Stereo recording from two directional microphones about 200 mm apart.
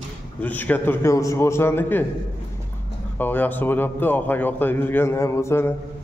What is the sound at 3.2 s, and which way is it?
A man's voice, 10° left (ahead or behind).